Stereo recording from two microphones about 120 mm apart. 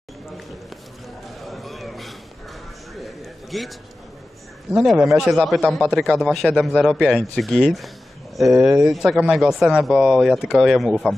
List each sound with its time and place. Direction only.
1.4 s a sound: centre (ahead or behind)
3.5 s speech: centre (ahead or behind)
4.7 s speech: centre (ahead or behind)